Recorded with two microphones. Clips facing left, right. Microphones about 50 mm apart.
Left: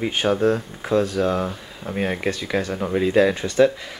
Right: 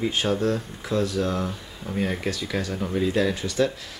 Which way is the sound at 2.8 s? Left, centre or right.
Left.